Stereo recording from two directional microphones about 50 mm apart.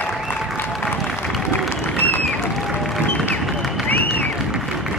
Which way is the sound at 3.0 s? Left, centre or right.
Left.